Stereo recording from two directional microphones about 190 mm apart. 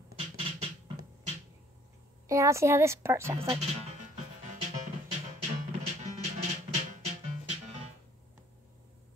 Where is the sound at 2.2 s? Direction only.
15° right (ahead or behind).